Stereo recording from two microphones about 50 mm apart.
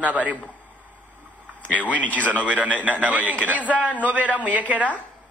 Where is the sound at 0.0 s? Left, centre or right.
Right.